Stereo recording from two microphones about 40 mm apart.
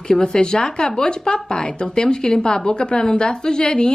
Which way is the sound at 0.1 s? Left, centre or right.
Left.